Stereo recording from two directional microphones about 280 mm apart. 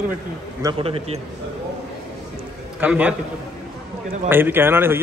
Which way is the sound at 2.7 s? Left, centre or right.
Centre.